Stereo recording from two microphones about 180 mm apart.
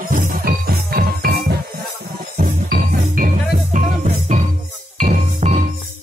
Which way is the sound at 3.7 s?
40° right (ahead or behind).